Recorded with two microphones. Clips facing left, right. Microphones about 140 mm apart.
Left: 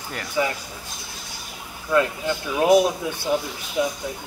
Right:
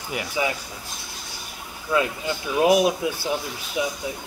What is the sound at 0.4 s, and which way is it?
Speech, 10° right (ahead or behind).